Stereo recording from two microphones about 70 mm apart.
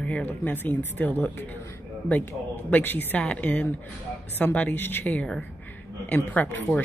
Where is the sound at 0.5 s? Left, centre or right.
Left.